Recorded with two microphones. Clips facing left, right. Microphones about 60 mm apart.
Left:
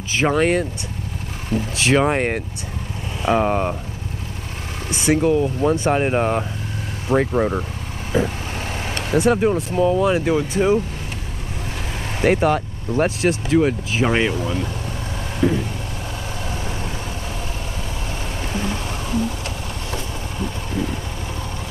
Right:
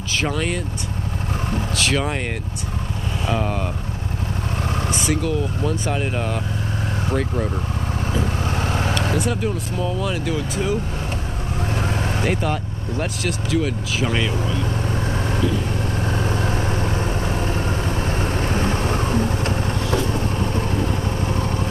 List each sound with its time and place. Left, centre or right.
0.3 s speech: left
1.8 s speech: left
4.7 s vehicle: right
5.0 s speech: left
8.5 s vehicle: right
9.2 s speech: left
11.7 s vehicle: right
12.2 s speech: left
15.4 s vehicle: left
16.0 s vehicle: right